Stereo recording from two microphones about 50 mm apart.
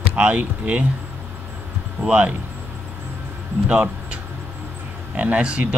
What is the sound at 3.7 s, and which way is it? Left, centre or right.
Speech, right.